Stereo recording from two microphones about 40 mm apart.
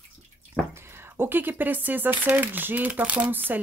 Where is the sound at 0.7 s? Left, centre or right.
Right.